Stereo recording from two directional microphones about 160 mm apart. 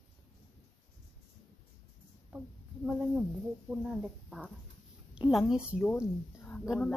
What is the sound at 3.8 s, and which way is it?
A woman's voice, 5° right (ahead or behind).